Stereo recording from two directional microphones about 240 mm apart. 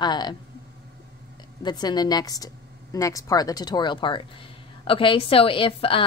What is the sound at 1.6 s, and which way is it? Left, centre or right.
A woman's voice, centre.